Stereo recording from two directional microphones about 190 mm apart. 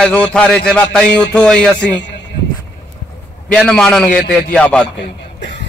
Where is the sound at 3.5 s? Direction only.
5° left (ahead or behind).